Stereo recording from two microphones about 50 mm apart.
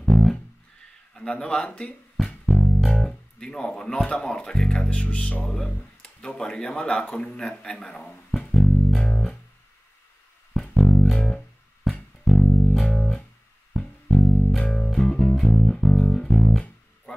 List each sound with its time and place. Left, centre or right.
0.0 s music: centre
1.1 s speech: centre
2.4 s music: centre
3.0 s a man's voice: centre
10.8 s bass guitar: centre
11.9 s music: centre
14.6 s music: centre